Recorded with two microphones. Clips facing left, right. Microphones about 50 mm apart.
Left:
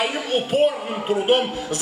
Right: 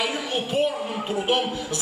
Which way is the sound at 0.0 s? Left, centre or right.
Left.